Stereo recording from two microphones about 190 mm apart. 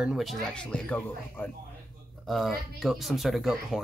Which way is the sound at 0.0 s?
Centre (ahead or behind).